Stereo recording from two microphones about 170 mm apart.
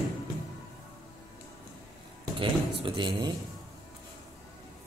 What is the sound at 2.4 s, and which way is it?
Speech, 30° right (ahead or behind).